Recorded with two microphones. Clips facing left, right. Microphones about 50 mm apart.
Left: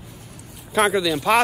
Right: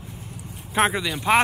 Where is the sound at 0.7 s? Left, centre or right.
Right.